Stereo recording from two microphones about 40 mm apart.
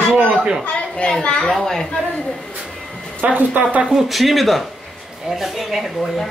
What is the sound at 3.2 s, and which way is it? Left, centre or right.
Speech, right.